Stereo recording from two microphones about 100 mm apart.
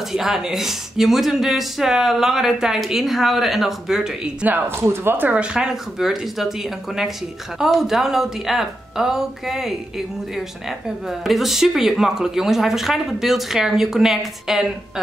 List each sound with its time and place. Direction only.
0.1 s speech: 5° right (ahead or behind)
4.5 s speech: 20° right (ahead or behind); by 6.5 s 5° right (ahead or behind)
7.5 s speech: 5° right (ahead or behind)
11.1 s speech: centre (ahead or behind)